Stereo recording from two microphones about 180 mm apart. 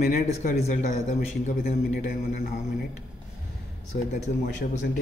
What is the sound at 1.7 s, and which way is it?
A man's voice, 60° left (ahead or behind).